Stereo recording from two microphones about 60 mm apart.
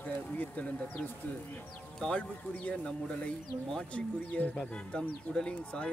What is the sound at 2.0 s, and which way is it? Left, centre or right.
Speech, centre.